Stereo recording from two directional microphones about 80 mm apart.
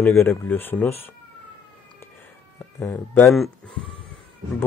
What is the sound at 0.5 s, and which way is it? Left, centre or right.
Speech, left.